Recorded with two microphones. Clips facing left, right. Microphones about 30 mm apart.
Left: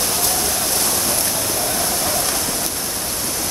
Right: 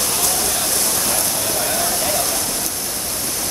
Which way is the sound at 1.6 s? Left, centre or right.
Centre.